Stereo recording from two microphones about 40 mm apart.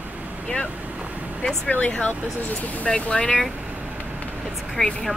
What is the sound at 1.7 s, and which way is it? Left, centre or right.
Speech, left.